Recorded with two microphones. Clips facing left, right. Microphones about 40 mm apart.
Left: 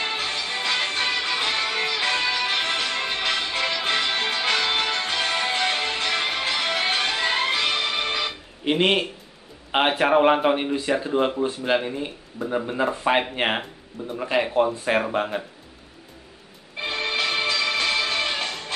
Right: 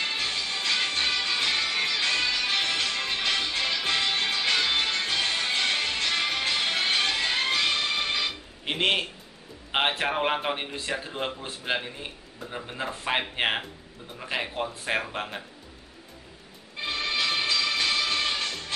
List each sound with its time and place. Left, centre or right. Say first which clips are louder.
0.0 s music: left 3 dB; left
4.9 s music: left 2 dB; centre
5.2 s music: left 4 dB; left
5.5 s music: left 3 dB; centre
8.1 s music: left 2 dB; centre
9.7 s speech: left 6 dB; centre
12.4 s speech: left 11 dB; centre
16.8 s music: left 3 dB; left